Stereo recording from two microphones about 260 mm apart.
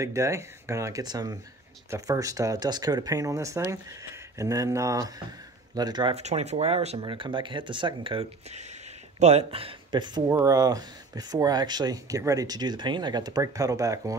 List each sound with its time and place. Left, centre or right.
0.0 s speech: centre